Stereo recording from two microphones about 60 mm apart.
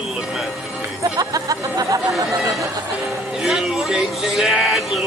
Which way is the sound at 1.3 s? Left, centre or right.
Right.